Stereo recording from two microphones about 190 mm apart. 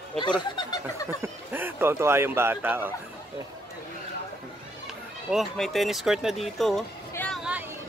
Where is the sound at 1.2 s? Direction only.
10° right (ahead or behind).